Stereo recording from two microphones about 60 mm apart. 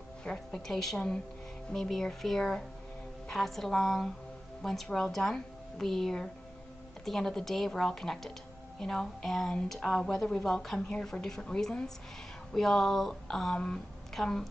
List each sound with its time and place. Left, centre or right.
0.2 s a woman's voice: centre